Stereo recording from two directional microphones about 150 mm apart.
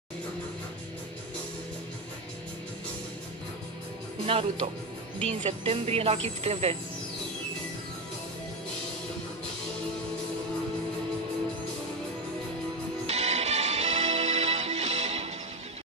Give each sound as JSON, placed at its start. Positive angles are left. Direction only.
{"t": 4.3, "sound": "speech", "side_deg": -40}
{"t": 5.3, "sound": "speech", "side_deg": -50}
{"t": 13.0, "sound": "music", "side_deg": -45}